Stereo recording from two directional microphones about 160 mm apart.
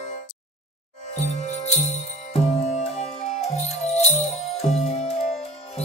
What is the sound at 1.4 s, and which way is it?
Music, 45° left (ahead or behind).